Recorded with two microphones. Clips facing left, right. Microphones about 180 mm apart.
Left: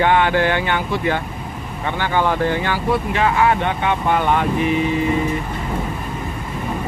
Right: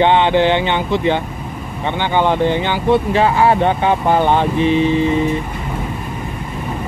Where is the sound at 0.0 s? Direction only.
25° right (ahead or behind).